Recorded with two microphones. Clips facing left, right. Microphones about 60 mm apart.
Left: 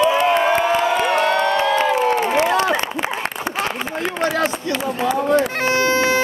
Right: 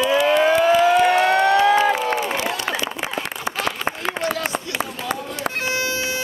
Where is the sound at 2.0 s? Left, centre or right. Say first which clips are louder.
Left 5 dB; left.